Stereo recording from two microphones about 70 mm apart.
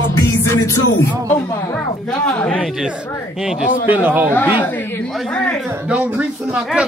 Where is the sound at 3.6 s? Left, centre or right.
Right.